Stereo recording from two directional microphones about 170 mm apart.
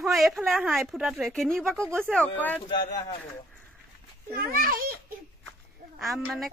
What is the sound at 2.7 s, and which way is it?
Speech, 25° left (ahead or behind).